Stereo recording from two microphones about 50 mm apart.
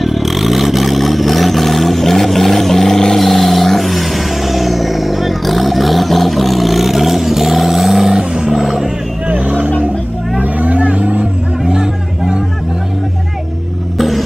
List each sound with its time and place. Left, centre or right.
0.0 s vehicle: centre
9.3 s vehicle: right
11.6 s a sound: centre
13.9 s vehicle: centre